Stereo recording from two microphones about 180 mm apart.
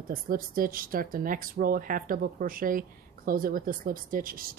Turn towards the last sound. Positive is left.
turn(degrees=-55)  # may be behind; listen again after turning